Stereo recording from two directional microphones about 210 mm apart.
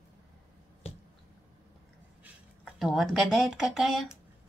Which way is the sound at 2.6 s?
Centre (ahead or behind).